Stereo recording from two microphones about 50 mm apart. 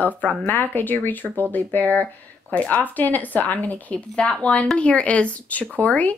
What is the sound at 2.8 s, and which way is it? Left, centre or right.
Speech, left.